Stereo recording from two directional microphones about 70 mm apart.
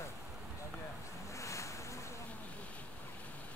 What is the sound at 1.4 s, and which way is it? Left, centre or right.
Ocean, left.